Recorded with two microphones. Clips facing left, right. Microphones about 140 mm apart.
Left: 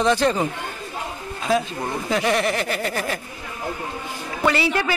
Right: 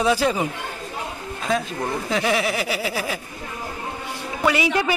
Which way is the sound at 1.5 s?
5° left (ahead or behind).